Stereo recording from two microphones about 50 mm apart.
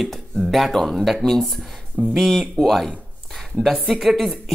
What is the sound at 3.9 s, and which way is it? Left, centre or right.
Speech, centre.